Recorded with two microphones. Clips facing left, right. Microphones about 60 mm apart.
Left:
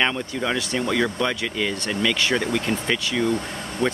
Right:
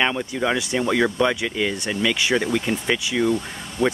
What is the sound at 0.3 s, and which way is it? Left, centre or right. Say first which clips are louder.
Speech: right 2 dB; centre.